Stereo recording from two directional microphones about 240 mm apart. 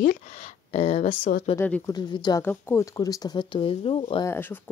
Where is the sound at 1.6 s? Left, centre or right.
Centre.